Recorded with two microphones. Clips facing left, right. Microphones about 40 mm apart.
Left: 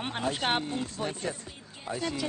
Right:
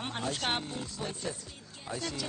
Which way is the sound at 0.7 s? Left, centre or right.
Left.